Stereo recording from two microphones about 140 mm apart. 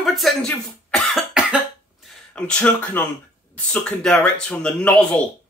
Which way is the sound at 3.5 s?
10° left (ahead or behind).